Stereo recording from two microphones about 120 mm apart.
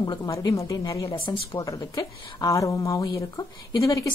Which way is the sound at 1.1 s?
45° left (ahead or behind).